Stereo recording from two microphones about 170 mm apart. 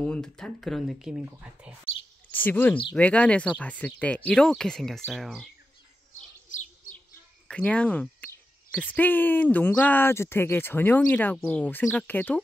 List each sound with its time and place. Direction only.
0.0 s speech: 5° left (ahead or behind)
2.3 s speech: 10° left (ahead or behind)
6.5 s bird: 50° left (ahead or behind)
7.4 s a sound: 5° left (ahead or behind)
8.8 s speech: 10° left (ahead or behind)